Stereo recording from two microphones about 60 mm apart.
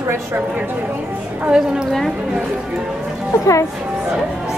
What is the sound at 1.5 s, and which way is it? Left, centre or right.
Speech, centre.